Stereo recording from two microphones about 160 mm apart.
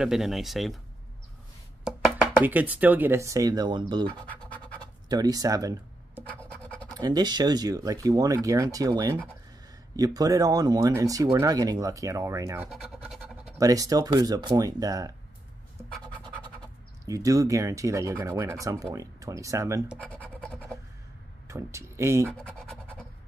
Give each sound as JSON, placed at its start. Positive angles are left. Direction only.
{"t": 0.0, "sound": "speech", "side_deg": 0}
{"t": 1.9, "sound": "speech", "side_deg": -5}
{"t": 4.3, "sound": "scratch", "side_deg": 10}
{"t": 5.0, "sound": "speech", "side_deg": -25}
{"t": 6.6, "sound": "scratch", "side_deg": 10}
{"t": 6.9, "sound": "speech", "side_deg": -25}
{"t": 12.6, "sound": "scratch", "side_deg": 0}
{"t": 13.6, "sound": "speech", "side_deg": -20}
{"t": 17.0, "sound": "speech", "side_deg": -20}
{"t": 20.0, "sound": "scratch", "side_deg": 10}
{"t": 21.5, "sound": "speech", "side_deg": -15}
{"t": 22.4, "sound": "scratch", "side_deg": 10}